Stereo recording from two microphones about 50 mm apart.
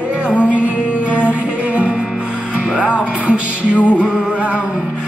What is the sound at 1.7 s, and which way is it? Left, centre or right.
Music, right.